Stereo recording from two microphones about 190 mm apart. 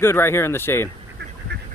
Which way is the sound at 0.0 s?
15° left (ahead or behind).